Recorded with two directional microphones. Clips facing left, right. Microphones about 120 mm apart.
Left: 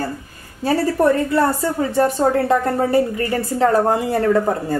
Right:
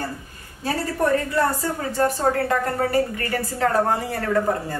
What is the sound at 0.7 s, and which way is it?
A woman's voice, 30° left (ahead or behind).